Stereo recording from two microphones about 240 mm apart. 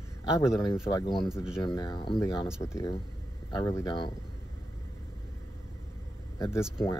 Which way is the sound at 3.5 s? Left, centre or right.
Centre.